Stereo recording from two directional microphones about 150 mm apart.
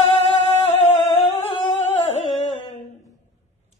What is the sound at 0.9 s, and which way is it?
Humming, 35° left (ahead or behind).